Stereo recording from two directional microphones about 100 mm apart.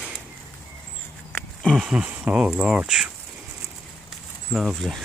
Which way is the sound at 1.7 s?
5° right (ahead or behind).